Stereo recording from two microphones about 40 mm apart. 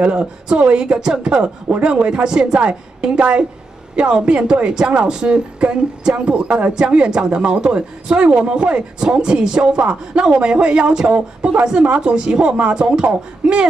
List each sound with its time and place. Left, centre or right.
0.0 s speech: right
0.9 s speech: centre